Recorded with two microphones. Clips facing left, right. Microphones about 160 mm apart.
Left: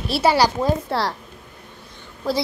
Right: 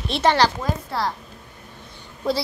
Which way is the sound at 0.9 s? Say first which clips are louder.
Left 3 dB; 60° left (ahead or behind).